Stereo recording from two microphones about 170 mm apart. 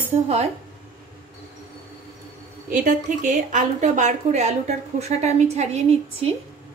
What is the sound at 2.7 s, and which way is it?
A woman's voice, 50° right (ahead or behind).